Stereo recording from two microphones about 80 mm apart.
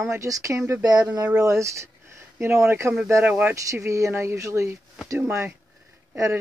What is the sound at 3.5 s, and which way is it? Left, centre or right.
Speech, right.